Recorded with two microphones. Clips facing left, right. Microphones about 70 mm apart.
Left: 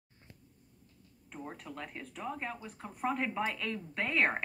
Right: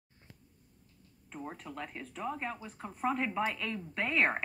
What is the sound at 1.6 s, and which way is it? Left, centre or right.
Speech, right.